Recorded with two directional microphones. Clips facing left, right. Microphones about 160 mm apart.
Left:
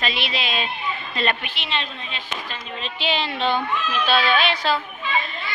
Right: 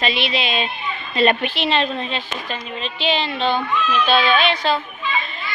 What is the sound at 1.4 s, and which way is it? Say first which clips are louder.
Speech: right 9 dB; 35° right (ahead or behind).